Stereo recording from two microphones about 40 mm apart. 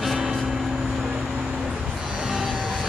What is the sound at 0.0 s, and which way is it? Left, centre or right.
Vehicle, centre.